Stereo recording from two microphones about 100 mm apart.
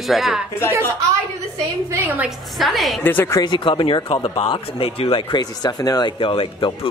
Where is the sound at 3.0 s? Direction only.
20° left (ahead or behind).